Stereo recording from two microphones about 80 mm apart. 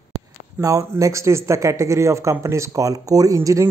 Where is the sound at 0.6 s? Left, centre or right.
Right.